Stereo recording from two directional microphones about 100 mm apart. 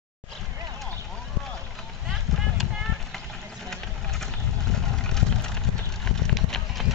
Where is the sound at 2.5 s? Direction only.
Centre (ahead or behind).